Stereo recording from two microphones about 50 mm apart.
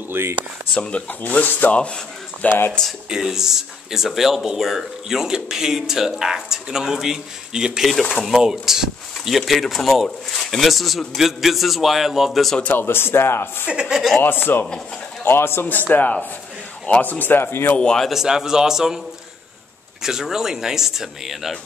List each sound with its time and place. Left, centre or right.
0.1 s speech: right
0.7 s speech: left
1.8 s speech: left
3.1 s speech: centre
7.9 s a man's voice: centre
8.3 s a man's voice: centre
12.7 s speech: left
13.7 s a woman's voice: centre
14.2 s speech: left
15.2 s speech: left
15.9 s speech: left
18.1 s speech: centre
20.0 s speech: centre